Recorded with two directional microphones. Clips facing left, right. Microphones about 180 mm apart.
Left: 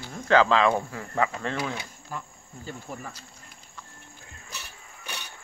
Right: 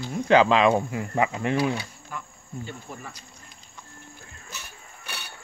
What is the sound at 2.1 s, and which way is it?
Insect, 35° left (ahead or behind).